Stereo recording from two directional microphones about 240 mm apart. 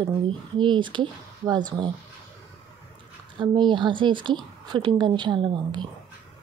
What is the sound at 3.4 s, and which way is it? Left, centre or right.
Speech, centre.